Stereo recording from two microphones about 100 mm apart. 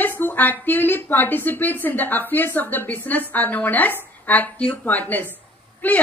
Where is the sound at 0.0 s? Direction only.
20° left (ahead or behind).